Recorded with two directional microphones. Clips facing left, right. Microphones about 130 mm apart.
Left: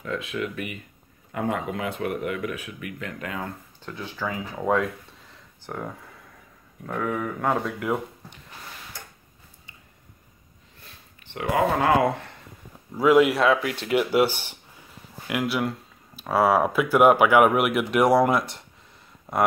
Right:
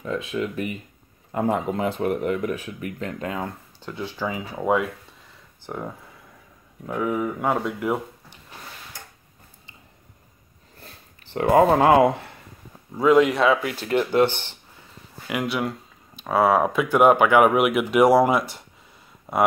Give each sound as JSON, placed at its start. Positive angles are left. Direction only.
{"t": 0.0, "sound": "speech", "side_deg": -25}
{"t": 3.8, "sound": "speech", "side_deg": -15}
{"t": 10.8, "sound": "a sound", "side_deg": -35}
{"t": 12.9, "sound": "speech", "side_deg": 5}